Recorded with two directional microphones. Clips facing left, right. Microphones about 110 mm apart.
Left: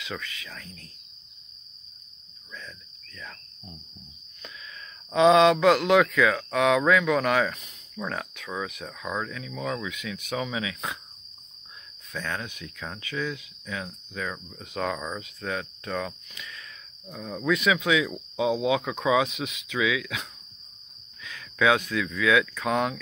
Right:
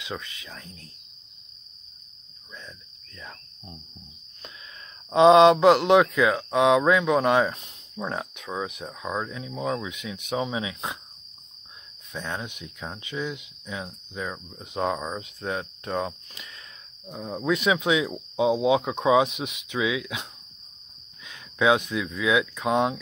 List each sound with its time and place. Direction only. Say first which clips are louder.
0.0 s speech: right 1 dB; 25° right (ahead or behind)
3.2 s insect: even; 25° right (ahead or behind)
5.1 s speech: right 3 dB; 25° right (ahead or behind)
12.1 s speech: even; 20° right (ahead or behind)